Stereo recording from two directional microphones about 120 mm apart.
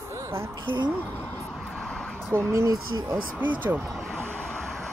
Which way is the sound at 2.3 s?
30° right (ahead or behind).